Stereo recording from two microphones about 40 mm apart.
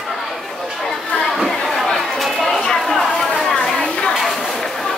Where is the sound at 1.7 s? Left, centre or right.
Centre.